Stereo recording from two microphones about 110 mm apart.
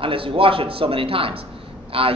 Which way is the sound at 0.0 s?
55° right (ahead or behind).